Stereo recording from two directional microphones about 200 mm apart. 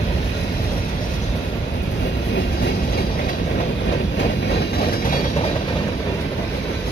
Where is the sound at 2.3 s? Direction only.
55° left (ahead or behind).